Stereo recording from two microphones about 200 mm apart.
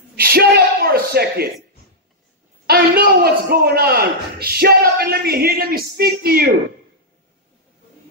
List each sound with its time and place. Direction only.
0.1 s speech: 50° right (ahead or behind)
2.6 s a man's voice: 50° right (ahead or behind)